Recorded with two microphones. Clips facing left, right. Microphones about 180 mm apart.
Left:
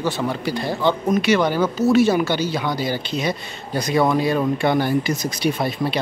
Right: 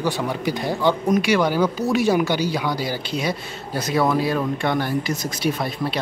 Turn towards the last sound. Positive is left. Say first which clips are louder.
# left 2 dB
turn(degrees=0)  # may be behind; listen again after turning